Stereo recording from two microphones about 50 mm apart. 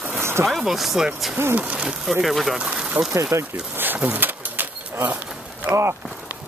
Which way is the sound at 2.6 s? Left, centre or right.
Right.